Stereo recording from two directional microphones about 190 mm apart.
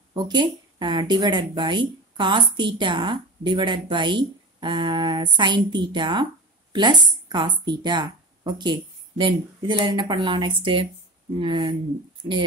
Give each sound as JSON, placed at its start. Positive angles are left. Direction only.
{"t": 0.1, "sound": "a woman's voice", "side_deg": -20}